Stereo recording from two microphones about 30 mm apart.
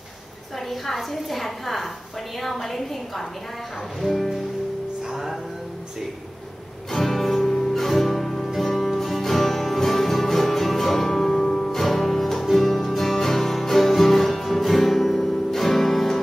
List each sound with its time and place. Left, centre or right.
0.7 s a woman's voice: centre
5.1 s music: centre
6.9 s music: centre
11.7 s music: centre